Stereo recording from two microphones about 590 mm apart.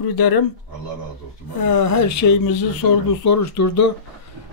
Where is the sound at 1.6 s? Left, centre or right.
Left.